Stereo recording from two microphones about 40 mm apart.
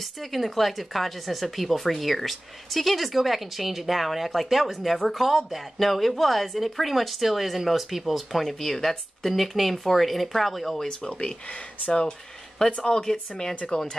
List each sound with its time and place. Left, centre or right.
0.0 s speech: centre
11.0 s speech: left